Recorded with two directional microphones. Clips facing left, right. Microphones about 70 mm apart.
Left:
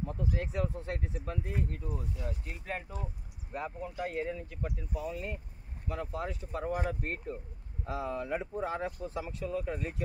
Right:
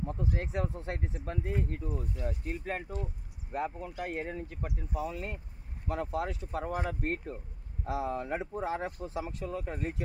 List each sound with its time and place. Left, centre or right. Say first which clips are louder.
0.0 s speech: even; right
4.2 s speech: left 1 dB; right